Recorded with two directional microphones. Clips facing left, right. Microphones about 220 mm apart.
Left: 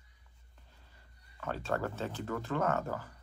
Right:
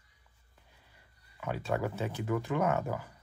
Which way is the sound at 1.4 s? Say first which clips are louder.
Right 2 dB; 10° right (ahead or behind).